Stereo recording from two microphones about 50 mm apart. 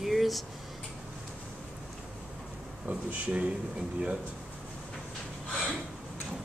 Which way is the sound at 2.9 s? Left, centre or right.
Right.